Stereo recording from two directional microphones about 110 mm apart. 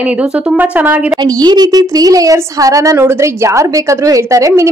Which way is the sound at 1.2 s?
40° right (ahead or behind).